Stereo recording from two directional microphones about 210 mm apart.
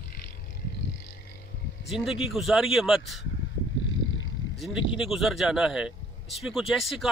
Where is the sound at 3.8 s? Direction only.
65° left (ahead or behind).